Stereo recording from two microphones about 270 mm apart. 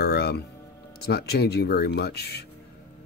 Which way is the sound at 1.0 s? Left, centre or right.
Left.